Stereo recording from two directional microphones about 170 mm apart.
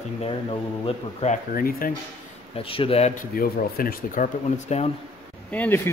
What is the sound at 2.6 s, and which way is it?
Speech, 35° left (ahead or behind).